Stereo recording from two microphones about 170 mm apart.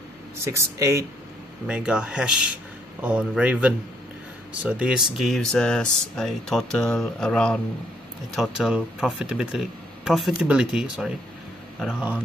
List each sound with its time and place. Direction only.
0.4 s speech: 15° right (ahead or behind)
1.7 s speech: 5° right (ahead or behind)